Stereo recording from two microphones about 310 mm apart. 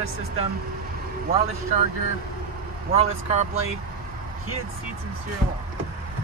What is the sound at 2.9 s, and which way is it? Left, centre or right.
Speech, right.